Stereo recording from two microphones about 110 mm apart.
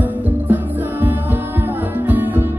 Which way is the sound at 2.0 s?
15° right (ahead or behind).